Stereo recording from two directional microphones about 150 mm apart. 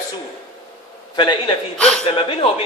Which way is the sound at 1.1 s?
30° left (ahead or behind).